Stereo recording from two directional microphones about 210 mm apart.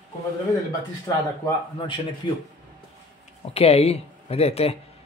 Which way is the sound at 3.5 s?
30° left (ahead or behind).